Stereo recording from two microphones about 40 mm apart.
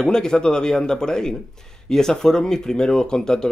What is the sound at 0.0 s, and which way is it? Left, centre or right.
Speech, centre.